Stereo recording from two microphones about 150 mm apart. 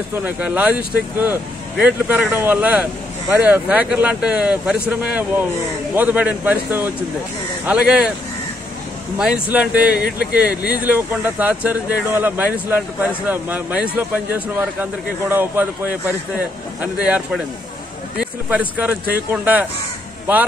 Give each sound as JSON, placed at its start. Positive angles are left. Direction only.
{"t": 0.2, "sound": "speech", "side_deg": -10}
{"t": 9.2, "sound": "speech", "side_deg": -5}